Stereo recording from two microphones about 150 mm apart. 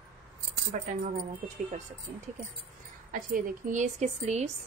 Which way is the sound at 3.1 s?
65° right (ahead or behind).